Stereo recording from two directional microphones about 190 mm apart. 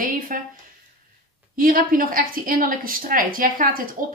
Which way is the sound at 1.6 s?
50° right (ahead or behind).